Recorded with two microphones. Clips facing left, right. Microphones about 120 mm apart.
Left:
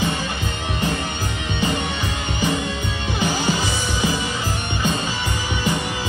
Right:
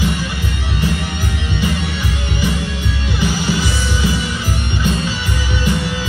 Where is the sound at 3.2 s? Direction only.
20° left (ahead or behind).